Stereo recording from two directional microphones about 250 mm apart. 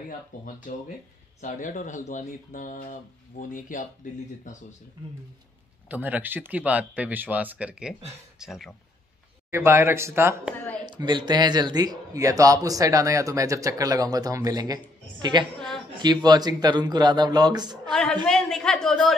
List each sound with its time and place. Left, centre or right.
0.3 s speech: left
5.9 s a woman's voice: centre
18.3 s a woman's voice: centre